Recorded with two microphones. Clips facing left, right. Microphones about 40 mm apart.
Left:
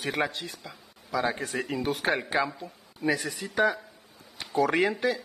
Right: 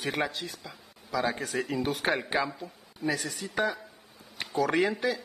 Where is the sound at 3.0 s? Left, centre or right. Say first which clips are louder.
Left 3 dB; left.